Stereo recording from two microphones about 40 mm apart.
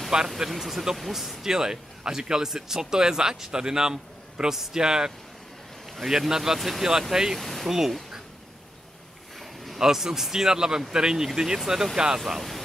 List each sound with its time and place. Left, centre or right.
0.4 s speech: centre
7.3 s a sound: centre
7.6 s speech: centre
9.4 s boat: centre
9.8 s speech: centre
12.3 s speech: centre